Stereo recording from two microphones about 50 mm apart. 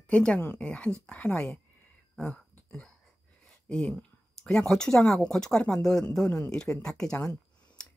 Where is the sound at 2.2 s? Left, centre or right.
Centre.